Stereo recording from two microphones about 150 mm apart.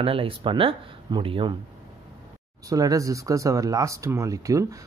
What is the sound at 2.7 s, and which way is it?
Speech, 25° right (ahead or behind).